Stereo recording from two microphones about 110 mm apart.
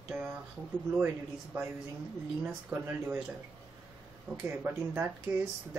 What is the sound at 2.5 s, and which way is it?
Speech, 20° right (ahead or behind).